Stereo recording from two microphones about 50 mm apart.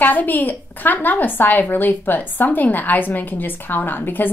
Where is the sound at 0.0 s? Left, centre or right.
Left.